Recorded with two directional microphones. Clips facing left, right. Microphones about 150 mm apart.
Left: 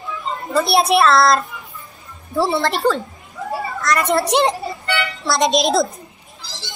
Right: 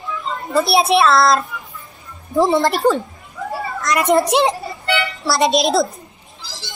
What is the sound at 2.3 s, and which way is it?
A woman's voice, 15° right (ahead or behind).